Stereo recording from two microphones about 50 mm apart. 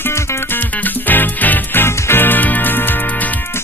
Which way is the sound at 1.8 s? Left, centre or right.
Left.